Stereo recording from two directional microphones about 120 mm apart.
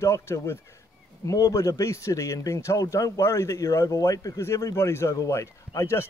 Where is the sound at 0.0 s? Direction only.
20° left (ahead or behind).